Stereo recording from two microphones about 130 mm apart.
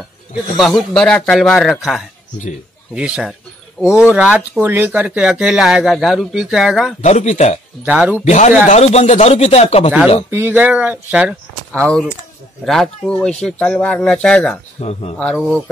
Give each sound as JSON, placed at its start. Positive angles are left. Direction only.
{"t": 0.6, "sound": "speech", "side_deg": 0}
{"t": 3.8, "sound": "speech", "side_deg": 10}
{"t": 4.1, "sound": "speech", "side_deg": -10}
{"t": 7.0, "sound": "speech", "side_deg": 65}
{"t": 7.8, "sound": "speech", "side_deg": -10}
{"t": 8.3, "sound": "speech", "side_deg": 65}
{"t": 10.3, "sound": "speech", "side_deg": -15}
{"t": 11.8, "sound": "speech", "side_deg": 10}
{"t": 14.8, "sound": "speech", "side_deg": 55}
{"t": 15.1, "sound": "speech", "side_deg": 5}